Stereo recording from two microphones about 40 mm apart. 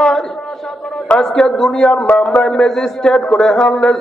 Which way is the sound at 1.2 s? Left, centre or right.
Centre.